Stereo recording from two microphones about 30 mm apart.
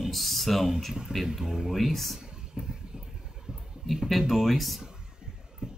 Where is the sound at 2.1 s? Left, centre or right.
Right.